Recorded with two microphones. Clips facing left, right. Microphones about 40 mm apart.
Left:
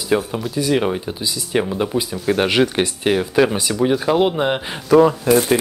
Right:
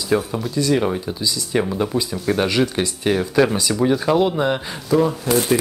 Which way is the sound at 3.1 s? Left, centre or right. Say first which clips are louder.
Left 1 dB; centre.